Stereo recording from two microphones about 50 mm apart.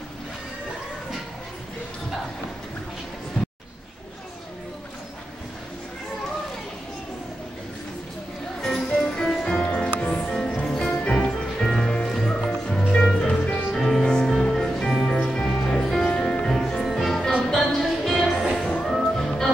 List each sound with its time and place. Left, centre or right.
3.4 s a sound: left
8.5 s music: centre
8.8 s music: centre
10.3 s music: centre
16.6 s music: centre
19.0 s music: centre